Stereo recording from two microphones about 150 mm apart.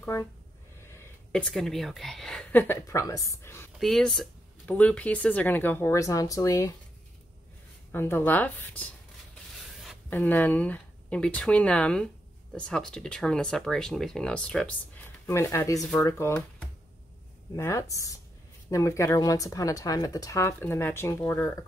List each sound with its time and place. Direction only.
0.0 s speech: 15° left (ahead or behind)
1.3 s a woman's voice: 5° left (ahead or behind)
3.7 s speech: centre (ahead or behind); by 6.7 s 20° left (ahead or behind)
7.9 s speech: 15° left (ahead or behind)
10.0 s a woman's voice: 10° left (ahead or behind)
15.2 s speech: 20° left (ahead or behind)